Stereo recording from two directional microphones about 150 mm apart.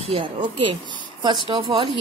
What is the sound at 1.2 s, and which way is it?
Speech, 30° right (ahead or behind).